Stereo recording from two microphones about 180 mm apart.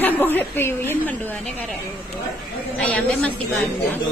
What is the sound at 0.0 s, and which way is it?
A woman's voice, 10° left (ahead or behind).